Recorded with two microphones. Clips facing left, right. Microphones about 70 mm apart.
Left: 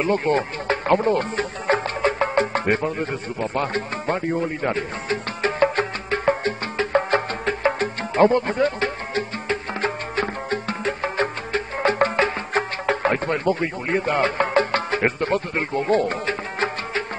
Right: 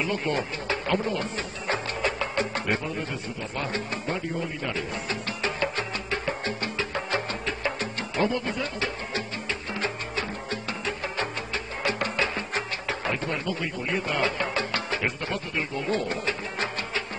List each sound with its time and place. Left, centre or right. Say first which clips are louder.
0.0 s speech: left 7 dB; left
4.6 s music: left 6 dB; left